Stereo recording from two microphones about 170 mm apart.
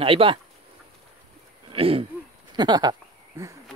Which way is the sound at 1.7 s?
35° right (ahead or behind).